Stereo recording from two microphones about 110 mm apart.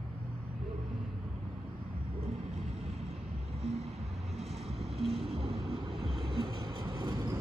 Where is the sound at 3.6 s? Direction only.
70° right (ahead or behind).